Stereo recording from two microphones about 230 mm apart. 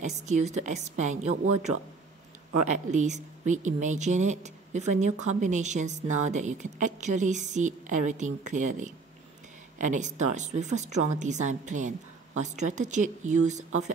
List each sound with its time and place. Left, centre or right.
0.0 s a woman's voice: right
2.7 s a woman's voice: right